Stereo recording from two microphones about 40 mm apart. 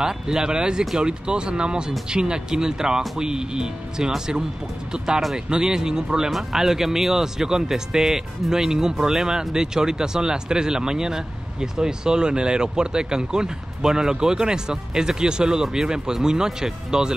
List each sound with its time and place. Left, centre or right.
0.0 s speech: centre